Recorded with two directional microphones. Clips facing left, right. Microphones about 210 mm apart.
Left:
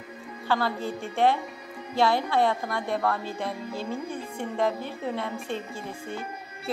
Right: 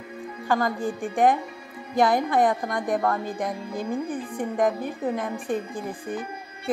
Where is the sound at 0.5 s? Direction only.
15° right (ahead or behind).